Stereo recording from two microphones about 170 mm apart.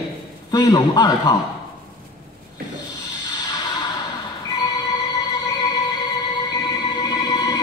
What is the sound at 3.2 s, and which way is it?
Music, 20° left (ahead or behind).